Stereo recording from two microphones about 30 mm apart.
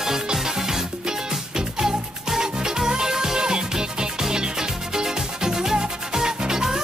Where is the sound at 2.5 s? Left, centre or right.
Right.